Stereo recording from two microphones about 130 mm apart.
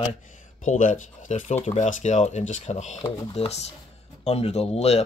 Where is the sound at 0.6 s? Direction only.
85° left.